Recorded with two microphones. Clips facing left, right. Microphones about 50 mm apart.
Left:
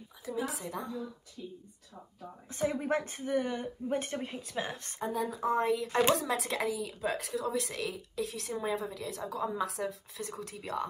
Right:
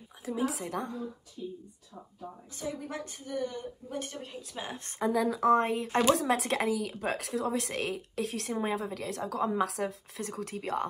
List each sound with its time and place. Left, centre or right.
0.2 s speech: right
2.5 s a woman's voice: left
4.5 s speech: centre
4.7 s speech: right